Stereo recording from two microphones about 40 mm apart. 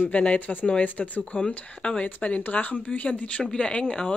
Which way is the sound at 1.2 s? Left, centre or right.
Left.